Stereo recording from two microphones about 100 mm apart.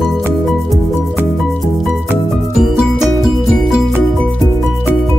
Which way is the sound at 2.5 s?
Centre (ahead or behind).